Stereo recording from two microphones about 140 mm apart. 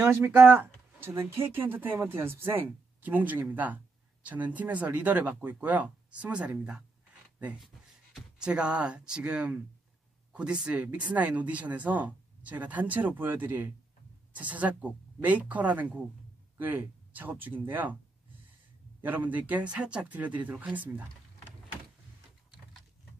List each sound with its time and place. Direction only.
0.0 s speech: 15° right (ahead or behind)
19.0 s speech: 10° right (ahead or behind)